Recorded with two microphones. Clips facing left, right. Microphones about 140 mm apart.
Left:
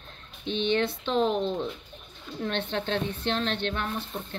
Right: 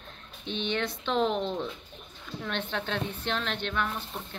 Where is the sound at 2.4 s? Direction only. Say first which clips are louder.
Left 4 dB; 30° left (ahead or behind).